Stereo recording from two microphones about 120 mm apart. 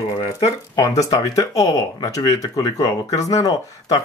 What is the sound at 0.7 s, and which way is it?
Speech, 30° left (ahead or behind).